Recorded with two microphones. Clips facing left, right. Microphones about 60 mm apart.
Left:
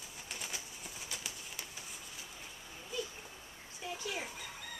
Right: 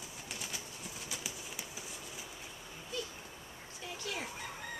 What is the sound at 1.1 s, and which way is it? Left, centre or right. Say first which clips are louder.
Horse: right 2 dB; centre.